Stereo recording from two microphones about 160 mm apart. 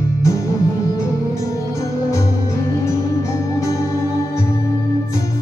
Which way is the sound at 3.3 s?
20° left (ahead or behind).